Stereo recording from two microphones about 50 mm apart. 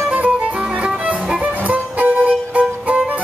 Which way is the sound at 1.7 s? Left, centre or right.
Right.